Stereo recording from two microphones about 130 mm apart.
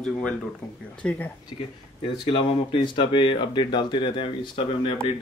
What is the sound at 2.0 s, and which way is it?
Speech, 40° left (ahead or behind).